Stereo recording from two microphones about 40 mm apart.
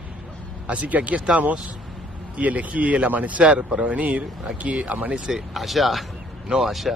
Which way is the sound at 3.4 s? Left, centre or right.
Right.